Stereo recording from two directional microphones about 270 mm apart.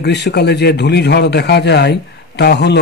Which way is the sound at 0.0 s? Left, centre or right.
Left.